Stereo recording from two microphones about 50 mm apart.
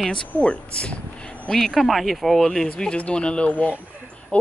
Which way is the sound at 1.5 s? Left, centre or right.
Centre.